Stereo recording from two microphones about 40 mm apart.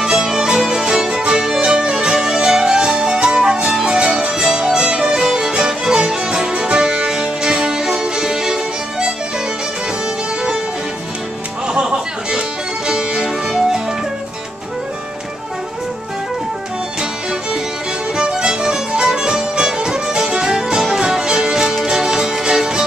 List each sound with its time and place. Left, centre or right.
0.0 s music: centre
11.6 s music: centre
18.1 s music: centre